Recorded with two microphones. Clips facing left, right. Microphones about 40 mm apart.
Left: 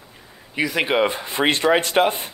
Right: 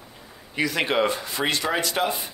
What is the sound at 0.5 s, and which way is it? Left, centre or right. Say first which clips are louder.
Speech: left 3 dB; centre.